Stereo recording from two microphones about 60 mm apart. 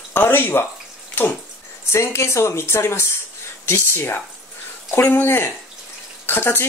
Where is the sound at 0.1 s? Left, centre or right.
Left.